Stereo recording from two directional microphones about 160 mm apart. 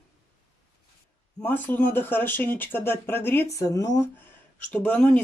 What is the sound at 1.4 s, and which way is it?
Speech, 10° left (ahead or behind).